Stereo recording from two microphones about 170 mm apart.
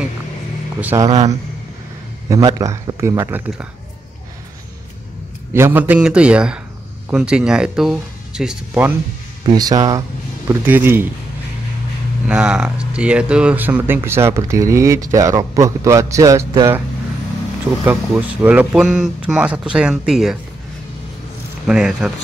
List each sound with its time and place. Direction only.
0.9 s speech: 15° right (ahead or behind)
2.2 s speech: 20° right (ahead or behind)
5.5 s speech: 15° right (ahead or behind)
9.4 s speech: 25° right (ahead or behind)
12.3 s speech: 5° right (ahead or behind)
17.8 s speech: 10° right (ahead or behind)
21.6 s speech: 5° right (ahead or behind)